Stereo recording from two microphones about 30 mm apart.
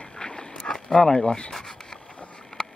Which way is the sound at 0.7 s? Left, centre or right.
Left.